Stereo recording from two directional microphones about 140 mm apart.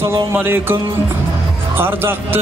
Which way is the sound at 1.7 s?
15° right (ahead or behind).